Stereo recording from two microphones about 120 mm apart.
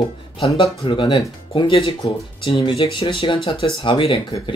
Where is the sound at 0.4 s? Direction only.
45° left (ahead or behind).